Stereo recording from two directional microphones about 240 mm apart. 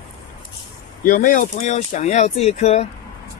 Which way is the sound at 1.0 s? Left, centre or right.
Left.